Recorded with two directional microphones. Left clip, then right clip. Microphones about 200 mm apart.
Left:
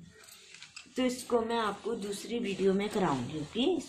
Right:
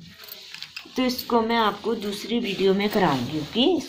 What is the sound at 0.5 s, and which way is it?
Speech, 35° right (ahead or behind).